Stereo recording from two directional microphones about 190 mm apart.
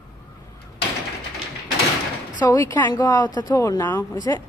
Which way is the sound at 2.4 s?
20° left (ahead or behind).